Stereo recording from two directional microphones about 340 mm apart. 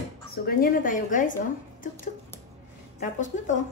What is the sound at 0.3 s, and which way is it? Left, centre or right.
A woman's voice, left.